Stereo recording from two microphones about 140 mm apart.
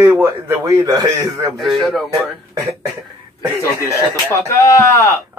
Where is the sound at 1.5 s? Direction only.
Centre (ahead or behind).